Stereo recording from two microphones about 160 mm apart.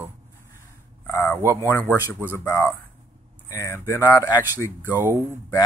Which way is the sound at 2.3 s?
15° left (ahead or behind).